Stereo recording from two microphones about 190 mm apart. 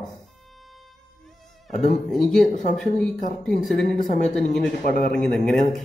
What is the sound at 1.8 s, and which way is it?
A man's voice, centre (ahead or behind).